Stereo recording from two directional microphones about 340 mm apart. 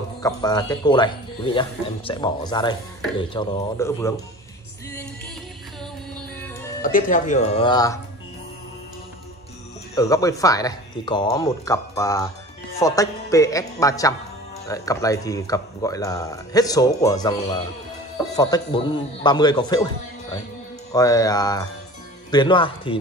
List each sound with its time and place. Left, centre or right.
0.2 s speech: centre
6.8 s speech: left
9.9 s speech: centre